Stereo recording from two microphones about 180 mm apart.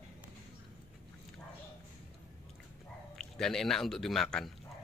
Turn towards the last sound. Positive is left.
turn(degrees=0)  # may be behind; listen again after turning